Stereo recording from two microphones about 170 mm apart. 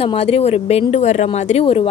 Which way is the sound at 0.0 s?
35° left (ahead or behind).